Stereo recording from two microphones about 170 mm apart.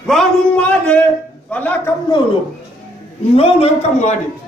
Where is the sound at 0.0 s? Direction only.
Centre (ahead or behind).